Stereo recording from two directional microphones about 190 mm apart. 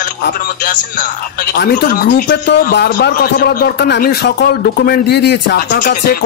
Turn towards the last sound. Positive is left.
turn(degrees=50)  # may be behind; listen again after turning